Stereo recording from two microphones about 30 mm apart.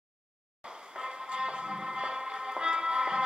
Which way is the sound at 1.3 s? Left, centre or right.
Right.